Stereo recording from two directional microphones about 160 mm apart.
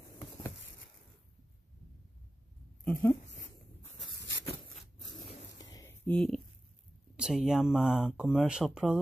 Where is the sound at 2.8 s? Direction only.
10° left (ahead or behind).